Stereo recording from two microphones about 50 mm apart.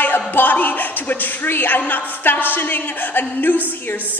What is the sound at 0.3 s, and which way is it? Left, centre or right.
A man's voice, left.